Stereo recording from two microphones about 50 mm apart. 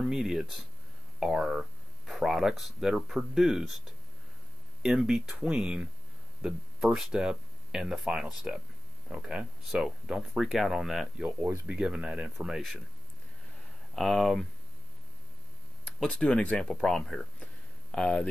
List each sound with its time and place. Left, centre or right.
0.0 s speech: centre
6.4 s speech: centre
9.6 s speech: centre
11.6 s speech: centre
12.4 s speech: centre
13.9 s speech: centre
16.1 s speech: left
16.8 s speech: centre